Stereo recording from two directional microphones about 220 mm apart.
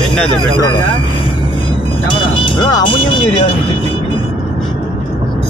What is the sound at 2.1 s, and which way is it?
Speech, 20° left (ahead or behind).